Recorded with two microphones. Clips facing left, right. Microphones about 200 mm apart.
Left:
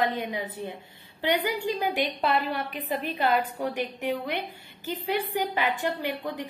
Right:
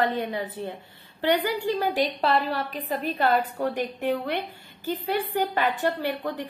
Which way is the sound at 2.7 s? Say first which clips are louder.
Right 2 dB; 45° right (ahead or behind).